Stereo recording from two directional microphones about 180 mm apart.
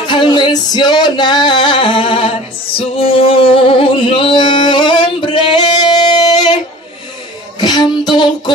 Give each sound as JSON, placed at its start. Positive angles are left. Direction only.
{"t": 0.0, "sound": "singing", "side_deg": 25}
{"t": 3.0, "sound": "music", "side_deg": 30}
{"t": 7.6, "sound": "music", "side_deg": 25}